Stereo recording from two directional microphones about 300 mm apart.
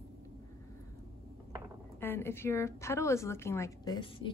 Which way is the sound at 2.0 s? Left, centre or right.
Centre.